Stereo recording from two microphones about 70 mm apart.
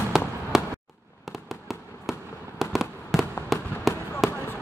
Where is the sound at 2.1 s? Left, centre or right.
Centre.